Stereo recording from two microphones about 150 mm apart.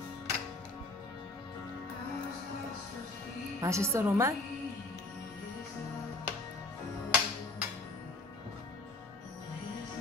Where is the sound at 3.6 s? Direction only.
20° right (ahead or behind).